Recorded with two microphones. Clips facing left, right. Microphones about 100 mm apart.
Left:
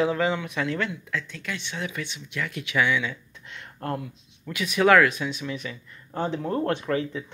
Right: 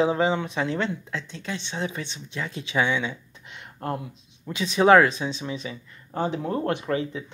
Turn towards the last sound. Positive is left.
turn(degrees=-25)  # may be behind; listen again after turning